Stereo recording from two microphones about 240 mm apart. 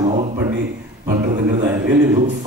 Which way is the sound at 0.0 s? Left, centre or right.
Right.